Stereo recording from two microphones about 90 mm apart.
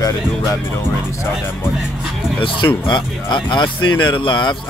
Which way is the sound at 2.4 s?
60° left (ahead or behind).